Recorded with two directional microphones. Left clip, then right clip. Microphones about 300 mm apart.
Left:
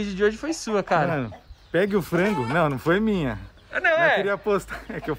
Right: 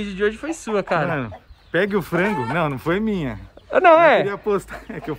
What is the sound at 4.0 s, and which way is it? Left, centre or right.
Speech, right.